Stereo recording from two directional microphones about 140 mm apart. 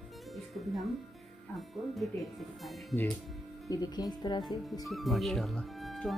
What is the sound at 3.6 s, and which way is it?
Speech, 25° left (ahead or behind).